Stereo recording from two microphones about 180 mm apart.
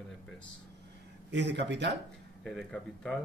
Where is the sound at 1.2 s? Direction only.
75° right (ahead or behind).